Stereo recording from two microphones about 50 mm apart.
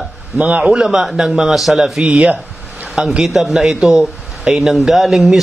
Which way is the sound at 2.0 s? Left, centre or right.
Right.